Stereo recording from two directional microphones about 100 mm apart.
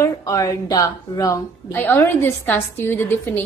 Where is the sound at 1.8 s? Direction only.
20° left (ahead or behind).